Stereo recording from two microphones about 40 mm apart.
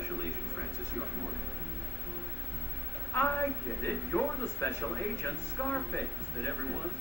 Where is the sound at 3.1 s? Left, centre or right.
Left.